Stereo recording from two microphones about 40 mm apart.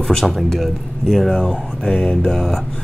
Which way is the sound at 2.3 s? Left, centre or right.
Centre.